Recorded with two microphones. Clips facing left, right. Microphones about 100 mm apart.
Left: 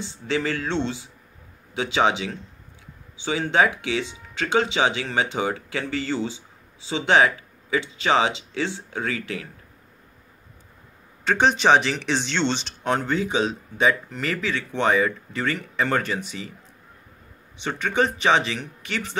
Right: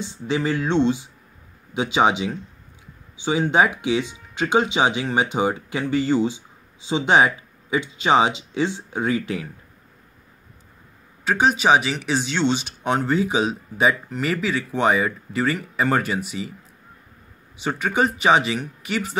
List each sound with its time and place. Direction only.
0.0 s speech: 15° right (ahead or behind)
11.2 s speech: 5° right (ahead or behind)
17.6 s speech: 10° right (ahead or behind)